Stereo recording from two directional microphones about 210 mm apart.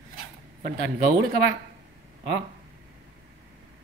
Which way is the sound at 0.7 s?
55° right (ahead or behind).